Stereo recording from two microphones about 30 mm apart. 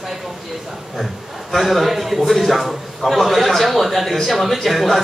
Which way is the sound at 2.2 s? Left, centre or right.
Centre.